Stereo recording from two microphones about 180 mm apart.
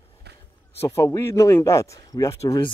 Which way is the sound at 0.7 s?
15° left (ahead or behind).